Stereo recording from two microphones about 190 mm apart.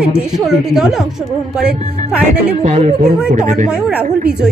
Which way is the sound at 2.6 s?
40° right (ahead or behind).